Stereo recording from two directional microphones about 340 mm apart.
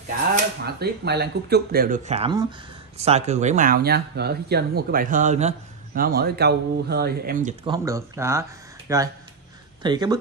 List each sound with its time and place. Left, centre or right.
0.7 s speech: right
7.7 s speech: centre